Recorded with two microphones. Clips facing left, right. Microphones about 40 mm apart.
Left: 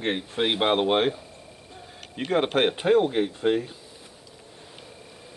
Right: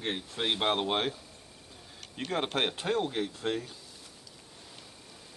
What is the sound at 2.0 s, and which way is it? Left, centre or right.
Speech, left.